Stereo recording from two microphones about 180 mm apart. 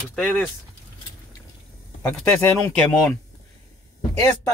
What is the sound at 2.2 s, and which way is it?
Speech, 10° left (ahead or behind).